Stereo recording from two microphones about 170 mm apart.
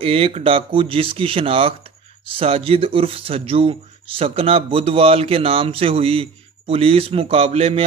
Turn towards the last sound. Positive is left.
turn(degrees=-35)  # may be behind; listen again after turning